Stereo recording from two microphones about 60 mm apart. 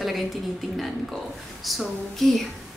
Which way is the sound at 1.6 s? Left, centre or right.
Centre.